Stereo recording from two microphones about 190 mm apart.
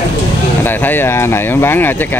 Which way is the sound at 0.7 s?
10° left (ahead or behind).